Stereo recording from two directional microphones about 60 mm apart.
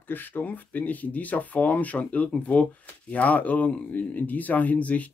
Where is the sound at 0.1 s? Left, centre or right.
Left.